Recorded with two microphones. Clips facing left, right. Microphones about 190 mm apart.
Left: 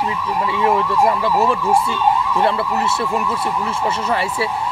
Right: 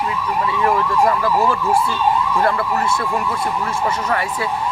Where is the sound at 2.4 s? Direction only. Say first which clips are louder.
Even; 25° left (ahead or behind).